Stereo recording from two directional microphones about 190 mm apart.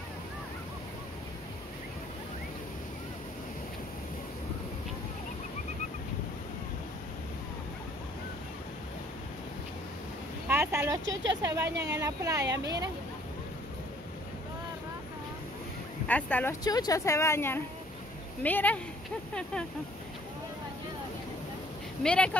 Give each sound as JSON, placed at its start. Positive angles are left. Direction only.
{"t": 10.5, "sound": "a sound", "side_deg": -15}
{"t": 11.4, "sound": "speech", "side_deg": -15}
{"t": 16.1, "sound": "a woman's voice", "side_deg": 10}
{"t": 16.6, "sound": "a woman's voice", "side_deg": 20}
{"t": 22.0, "sound": "speech", "side_deg": 5}